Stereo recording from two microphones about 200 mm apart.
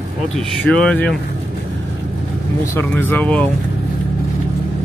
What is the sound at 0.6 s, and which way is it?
Speech, 5° left (ahead or behind).